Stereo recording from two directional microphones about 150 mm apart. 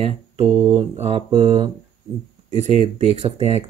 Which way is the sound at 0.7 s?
40° right (ahead or behind).